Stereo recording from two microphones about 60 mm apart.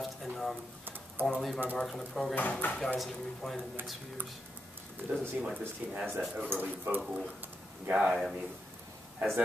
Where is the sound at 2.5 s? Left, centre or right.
Left.